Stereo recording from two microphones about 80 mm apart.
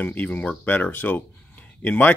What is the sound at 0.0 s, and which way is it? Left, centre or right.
Speech, left.